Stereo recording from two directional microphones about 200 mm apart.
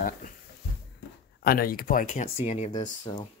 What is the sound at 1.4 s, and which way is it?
Speech, 45° left (ahead or behind).